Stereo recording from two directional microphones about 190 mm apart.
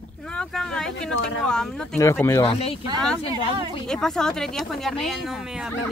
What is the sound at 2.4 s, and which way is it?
Speech, 30° left (ahead or behind).